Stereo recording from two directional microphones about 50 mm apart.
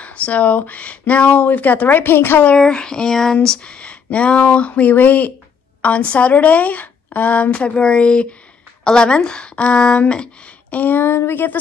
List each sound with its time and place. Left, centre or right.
0.0 s speech: left
2.5 s a sound: centre
3.6 s a woman's voice: left
10.7 s speech: left